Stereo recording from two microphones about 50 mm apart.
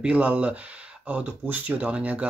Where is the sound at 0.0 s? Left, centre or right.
Right.